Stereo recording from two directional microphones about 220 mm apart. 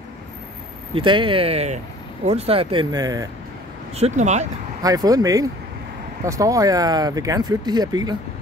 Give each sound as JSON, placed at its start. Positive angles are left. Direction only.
{"t": 0.9, "sound": "speech", "side_deg": -25}
{"t": 3.9, "sound": "speech", "side_deg": -30}
{"t": 4.8, "sound": "speech", "side_deg": -15}